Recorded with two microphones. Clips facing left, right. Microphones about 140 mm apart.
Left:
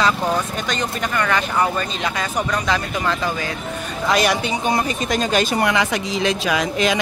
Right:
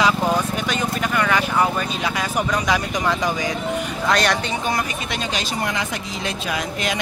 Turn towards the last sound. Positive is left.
turn(degrees=90)